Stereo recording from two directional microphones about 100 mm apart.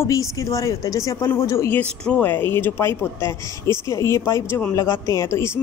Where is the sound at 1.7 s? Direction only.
15° left (ahead or behind).